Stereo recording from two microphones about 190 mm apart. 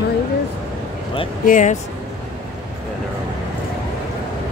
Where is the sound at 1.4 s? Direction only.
40° left (ahead or behind).